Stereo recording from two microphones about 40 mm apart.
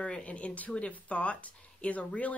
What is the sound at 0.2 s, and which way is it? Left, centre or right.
Speech, left.